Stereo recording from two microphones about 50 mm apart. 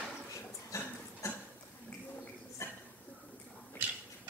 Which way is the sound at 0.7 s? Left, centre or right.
Left.